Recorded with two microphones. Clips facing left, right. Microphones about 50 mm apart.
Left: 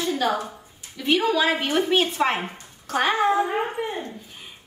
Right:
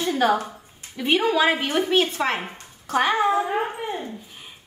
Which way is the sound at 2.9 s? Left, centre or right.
Centre.